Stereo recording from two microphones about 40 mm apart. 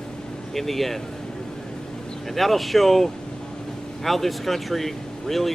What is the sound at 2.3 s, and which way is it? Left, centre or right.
Speech, centre.